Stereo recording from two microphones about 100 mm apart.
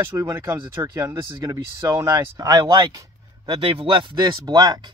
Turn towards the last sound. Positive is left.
turn(degrees=-45)  # may be behind; listen again after turning